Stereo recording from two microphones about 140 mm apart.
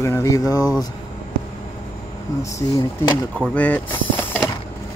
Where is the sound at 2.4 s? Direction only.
20° left (ahead or behind).